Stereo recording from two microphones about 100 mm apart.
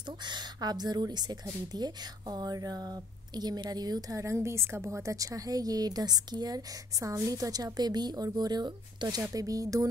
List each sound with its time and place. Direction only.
0.2 s speech: 45° right (ahead or behind)